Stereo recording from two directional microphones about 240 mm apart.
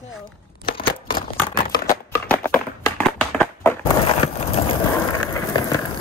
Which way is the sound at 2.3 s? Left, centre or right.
Centre.